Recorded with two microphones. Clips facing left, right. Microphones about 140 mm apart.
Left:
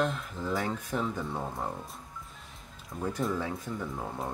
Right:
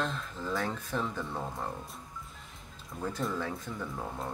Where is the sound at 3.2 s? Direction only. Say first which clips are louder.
Left 3 dB; 5° left (ahead or behind).